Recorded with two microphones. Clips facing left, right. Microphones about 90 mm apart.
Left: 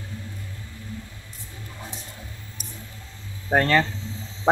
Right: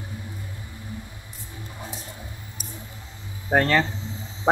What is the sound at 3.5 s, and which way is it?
Speech, 15° right (ahead or behind).